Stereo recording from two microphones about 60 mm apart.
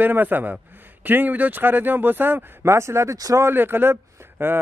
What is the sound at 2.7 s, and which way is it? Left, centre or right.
Speech, right.